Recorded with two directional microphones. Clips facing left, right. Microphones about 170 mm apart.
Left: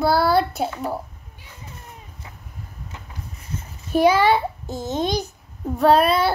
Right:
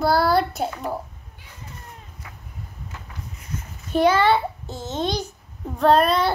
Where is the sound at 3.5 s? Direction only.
30° left (ahead or behind).